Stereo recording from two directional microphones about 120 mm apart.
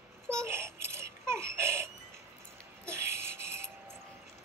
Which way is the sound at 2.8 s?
20° right (ahead or behind).